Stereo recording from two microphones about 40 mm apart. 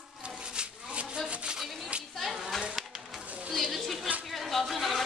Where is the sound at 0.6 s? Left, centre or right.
Right.